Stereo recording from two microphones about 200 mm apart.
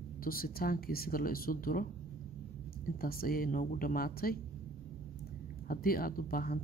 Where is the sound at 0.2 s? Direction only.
45° left (ahead or behind).